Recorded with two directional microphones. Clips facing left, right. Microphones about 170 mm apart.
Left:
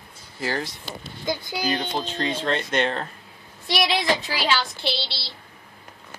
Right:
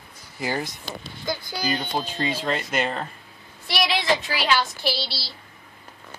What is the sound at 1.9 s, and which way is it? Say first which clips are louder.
Speech: even; 10° right (ahead or behind).